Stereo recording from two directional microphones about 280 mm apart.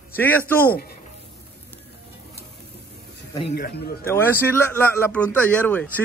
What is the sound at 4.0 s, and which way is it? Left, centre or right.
A man's voice, centre.